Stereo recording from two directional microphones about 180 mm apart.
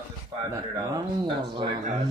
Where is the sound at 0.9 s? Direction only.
25° right (ahead or behind).